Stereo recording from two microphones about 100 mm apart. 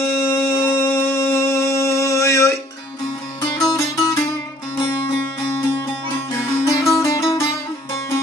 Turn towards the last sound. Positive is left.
turn(degrees=30)  # may be behind; listen again after turning